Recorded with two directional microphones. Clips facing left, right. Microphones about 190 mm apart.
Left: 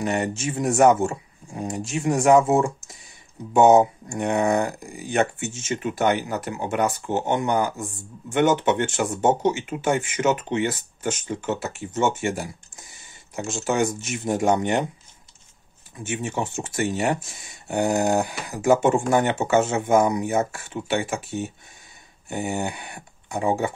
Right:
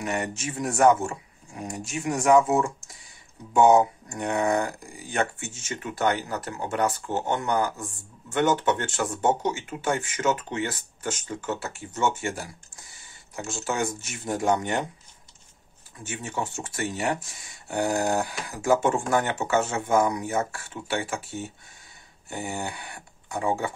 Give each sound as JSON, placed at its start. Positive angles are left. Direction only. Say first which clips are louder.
{"t": 0.0, "sound": "speech", "louder": "left 5 dB", "side_deg": 30}
{"t": 16.0, "sound": "speech", "louder": "left 5 dB", "side_deg": 20}